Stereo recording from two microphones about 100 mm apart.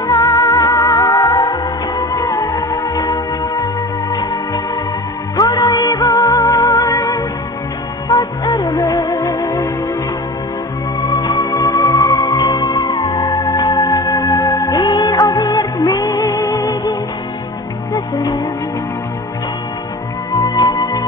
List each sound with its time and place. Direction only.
0.0 s music: 40° left (ahead or behind)
5.4 s music: 40° left (ahead or behind)
11.0 s music: 40° left (ahead or behind)
17.9 s music: 45° left (ahead or behind)
20.3 s music: 30° left (ahead or behind)